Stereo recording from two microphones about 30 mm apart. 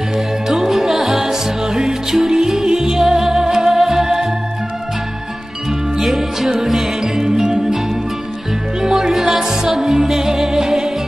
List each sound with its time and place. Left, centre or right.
0.7 s music: centre
5.9 s music: centre